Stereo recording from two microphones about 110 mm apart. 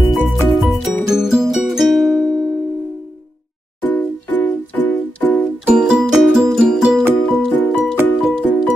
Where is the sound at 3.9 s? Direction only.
15° left (ahead or behind).